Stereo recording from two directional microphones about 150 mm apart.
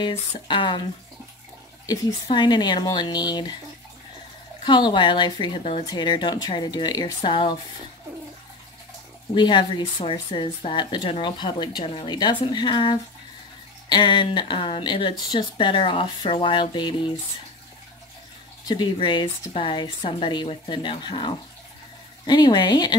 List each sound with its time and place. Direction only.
0.0 s speech: 35° left (ahead or behind)
2.3 s speech: 30° left (ahead or behind)
4.6 s speech: 30° left (ahead or behind)
9.3 s speech: 30° left (ahead or behind)
18.7 s speech: 30° left (ahead or behind)